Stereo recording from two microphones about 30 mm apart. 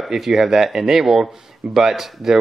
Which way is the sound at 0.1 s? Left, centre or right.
Centre.